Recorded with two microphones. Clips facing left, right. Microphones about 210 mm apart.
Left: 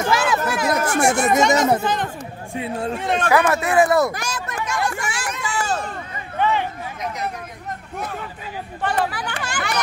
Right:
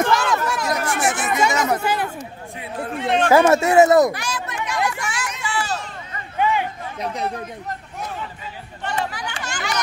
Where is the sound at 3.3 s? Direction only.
25° right (ahead or behind).